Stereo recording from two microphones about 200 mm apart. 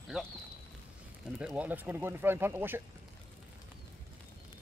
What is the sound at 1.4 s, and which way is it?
Speech, 5° right (ahead or behind).